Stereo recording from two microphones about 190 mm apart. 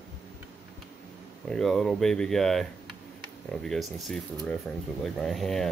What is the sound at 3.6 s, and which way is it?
Speech, centre (ahead or behind).